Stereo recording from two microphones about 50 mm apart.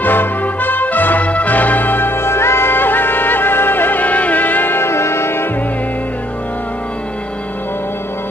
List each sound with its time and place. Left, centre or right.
0.0 s brass instrument: left